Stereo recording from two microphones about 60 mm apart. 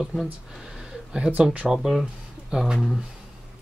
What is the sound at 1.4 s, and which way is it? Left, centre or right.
Speech, right.